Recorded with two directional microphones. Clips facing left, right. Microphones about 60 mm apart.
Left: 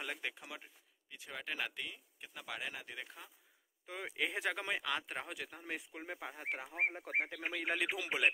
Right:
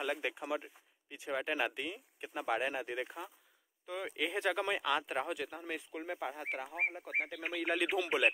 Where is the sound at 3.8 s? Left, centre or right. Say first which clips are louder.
Right 2 dB; centre.